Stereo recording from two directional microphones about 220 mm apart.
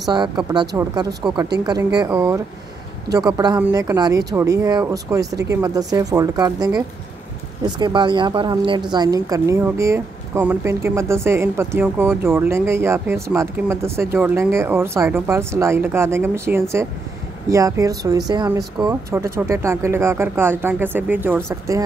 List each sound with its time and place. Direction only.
0.0 s speech: 20° right (ahead or behind)
2.1 s speech: 5° right (ahead or behind)